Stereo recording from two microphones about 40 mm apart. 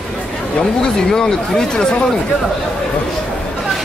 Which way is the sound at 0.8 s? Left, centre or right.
Centre.